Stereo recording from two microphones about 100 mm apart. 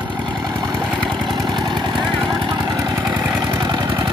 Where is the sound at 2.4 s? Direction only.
45° right (ahead or behind).